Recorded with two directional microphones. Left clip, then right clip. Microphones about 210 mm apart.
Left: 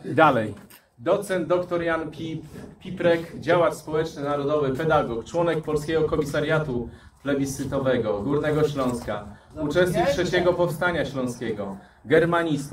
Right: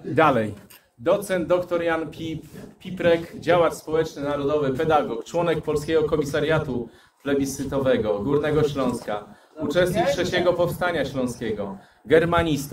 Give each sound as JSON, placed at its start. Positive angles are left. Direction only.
{"t": 1.0, "sound": "a man's voice", "side_deg": -55}